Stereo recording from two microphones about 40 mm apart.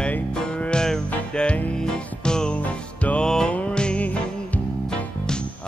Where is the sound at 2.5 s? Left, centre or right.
Left.